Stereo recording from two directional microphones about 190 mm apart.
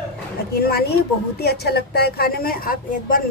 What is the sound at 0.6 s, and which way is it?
Speech, 55° left (ahead or behind).